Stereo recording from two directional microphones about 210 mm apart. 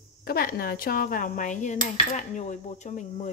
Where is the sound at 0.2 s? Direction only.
45° left (ahead or behind).